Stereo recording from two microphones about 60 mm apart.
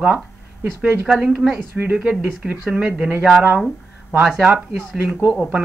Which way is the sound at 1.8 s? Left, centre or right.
Right.